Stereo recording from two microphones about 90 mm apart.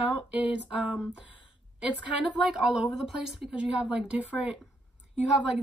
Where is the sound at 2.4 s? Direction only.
5° right (ahead or behind).